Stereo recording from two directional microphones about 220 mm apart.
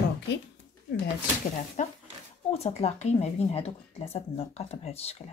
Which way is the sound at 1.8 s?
35° left (ahead or behind).